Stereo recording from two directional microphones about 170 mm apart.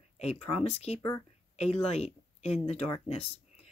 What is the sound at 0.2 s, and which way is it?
Speech, 35° left (ahead or behind).